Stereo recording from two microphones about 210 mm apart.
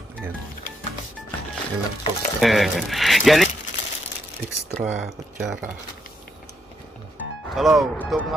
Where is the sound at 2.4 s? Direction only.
Centre (ahead or behind).